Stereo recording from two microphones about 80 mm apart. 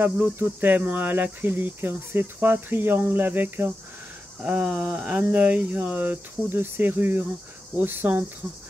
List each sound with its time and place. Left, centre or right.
0.0 s cricket: right
4.4 s speech: centre
5.3 s cricket: centre